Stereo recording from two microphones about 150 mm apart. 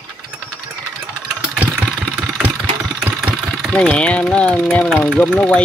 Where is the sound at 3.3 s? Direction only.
Centre (ahead or behind).